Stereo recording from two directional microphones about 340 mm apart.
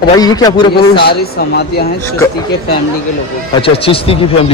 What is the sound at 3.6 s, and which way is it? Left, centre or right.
Speech, centre.